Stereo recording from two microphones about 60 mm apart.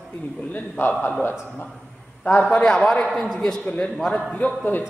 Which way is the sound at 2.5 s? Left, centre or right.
Centre.